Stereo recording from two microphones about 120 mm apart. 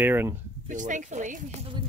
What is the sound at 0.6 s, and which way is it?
Speech, 90° right.